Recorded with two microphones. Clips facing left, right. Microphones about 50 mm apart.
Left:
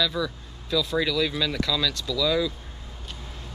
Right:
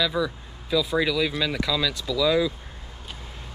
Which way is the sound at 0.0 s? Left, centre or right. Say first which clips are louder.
Right 2 dB; centre.